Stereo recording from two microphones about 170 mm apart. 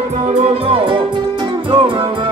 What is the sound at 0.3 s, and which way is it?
Music, 45° right (ahead or behind).